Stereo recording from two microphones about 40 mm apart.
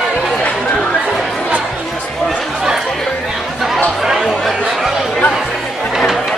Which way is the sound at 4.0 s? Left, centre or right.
Centre.